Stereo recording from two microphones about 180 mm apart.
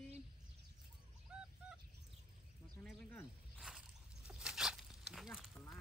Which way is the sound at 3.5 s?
5° right (ahead or behind).